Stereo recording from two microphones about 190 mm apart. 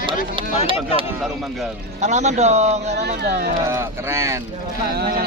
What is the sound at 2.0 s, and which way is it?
Speech, 35° right (ahead or behind).